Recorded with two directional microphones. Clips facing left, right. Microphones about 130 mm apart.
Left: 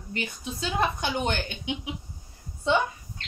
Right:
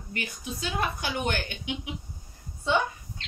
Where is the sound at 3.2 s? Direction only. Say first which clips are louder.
Left 2 dB; 50° left (ahead or behind).